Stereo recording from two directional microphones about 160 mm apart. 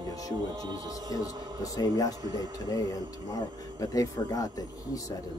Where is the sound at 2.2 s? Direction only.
25° right (ahead or behind).